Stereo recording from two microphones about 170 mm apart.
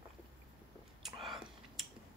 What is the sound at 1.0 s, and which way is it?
Whispering, centre (ahead or behind).